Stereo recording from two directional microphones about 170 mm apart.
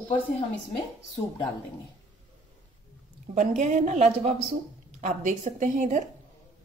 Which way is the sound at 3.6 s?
45° right (ahead or behind).